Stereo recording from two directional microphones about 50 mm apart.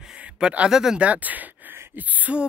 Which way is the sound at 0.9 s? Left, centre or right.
Right.